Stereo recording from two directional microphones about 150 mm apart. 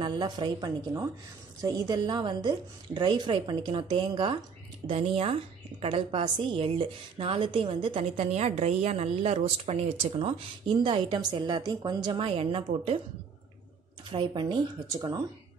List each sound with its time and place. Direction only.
0.0 s a woman's voice: 30° right (ahead or behind)
14.1 s a woman's voice: 30° right (ahead or behind)